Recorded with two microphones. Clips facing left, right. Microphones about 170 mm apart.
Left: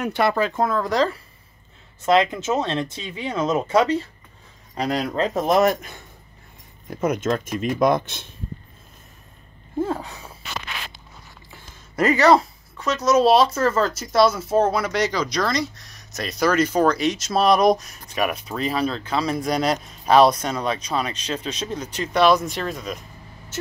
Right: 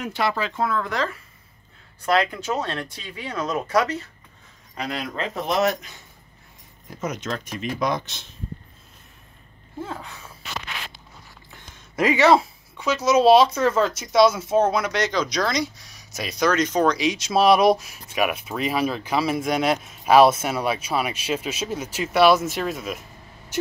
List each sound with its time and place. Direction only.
0.0 s speech: 55° left (ahead or behind); by 1.2 s 35° left (ahead or behind)
2.0 s a man's voice: 20° left (ahead or behind); by 5.9 s 50° left (ahead or behind)
7.0 s speech: 50° left (ahead or behind)
9.8 s a man's voice: 35° left (ahead or behind)
11.5 s speech: centre (ahead or behind)